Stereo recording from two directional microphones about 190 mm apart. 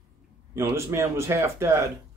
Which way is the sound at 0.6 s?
15° right (ahead or behind).